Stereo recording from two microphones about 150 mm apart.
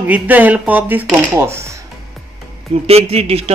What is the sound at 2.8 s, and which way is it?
Speech, 45° right (ahead or behind).